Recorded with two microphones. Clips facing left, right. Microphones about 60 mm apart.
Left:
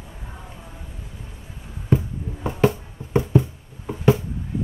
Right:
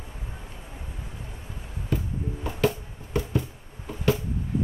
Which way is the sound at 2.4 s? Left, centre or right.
Left.